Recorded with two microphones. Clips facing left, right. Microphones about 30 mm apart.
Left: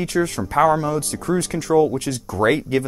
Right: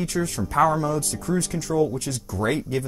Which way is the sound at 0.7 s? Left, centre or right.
Left.